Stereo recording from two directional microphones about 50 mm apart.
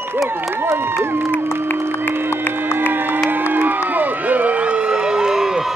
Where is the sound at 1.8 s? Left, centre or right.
Right.